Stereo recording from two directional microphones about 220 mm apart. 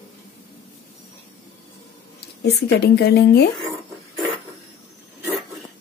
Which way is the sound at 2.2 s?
50° left (ahead or behind).